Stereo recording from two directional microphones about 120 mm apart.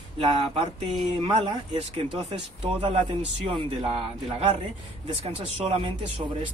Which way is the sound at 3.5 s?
50° right (ahead or behind).